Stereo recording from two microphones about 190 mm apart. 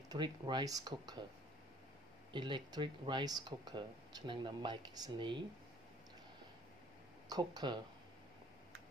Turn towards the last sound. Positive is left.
turn(degrees=-25)  # may be behind; listen again after turning